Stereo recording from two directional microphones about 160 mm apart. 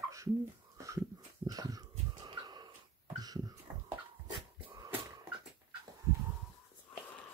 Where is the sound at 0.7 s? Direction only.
20° right (ahead or behind).